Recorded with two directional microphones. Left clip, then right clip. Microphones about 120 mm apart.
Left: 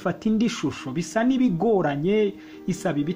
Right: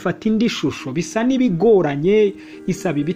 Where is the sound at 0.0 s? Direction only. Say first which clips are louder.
Right 5 dB; 20° right (ahead or behind).